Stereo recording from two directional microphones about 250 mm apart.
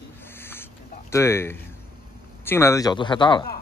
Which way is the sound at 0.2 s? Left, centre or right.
Centre.